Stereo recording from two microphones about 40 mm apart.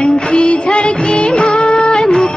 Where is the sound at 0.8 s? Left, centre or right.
Left.